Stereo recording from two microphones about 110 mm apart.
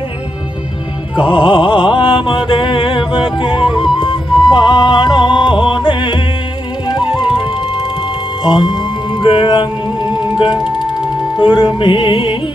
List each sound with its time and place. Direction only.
1.1 s music: 50° left (ahead or behind)